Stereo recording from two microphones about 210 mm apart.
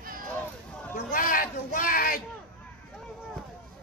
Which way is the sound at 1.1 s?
40° left (ahead or behind).